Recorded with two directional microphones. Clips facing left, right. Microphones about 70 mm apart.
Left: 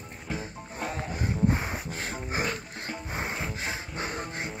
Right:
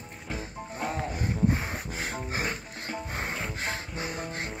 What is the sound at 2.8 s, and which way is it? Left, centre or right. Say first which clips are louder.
Music: even; centre.